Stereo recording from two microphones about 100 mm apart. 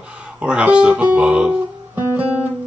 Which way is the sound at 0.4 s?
10° right (ahead or behind).